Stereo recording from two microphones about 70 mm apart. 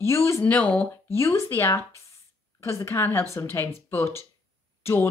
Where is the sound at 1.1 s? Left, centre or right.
Left.